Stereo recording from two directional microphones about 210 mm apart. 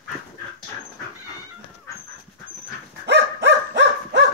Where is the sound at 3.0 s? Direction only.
55° right (ahead or behind).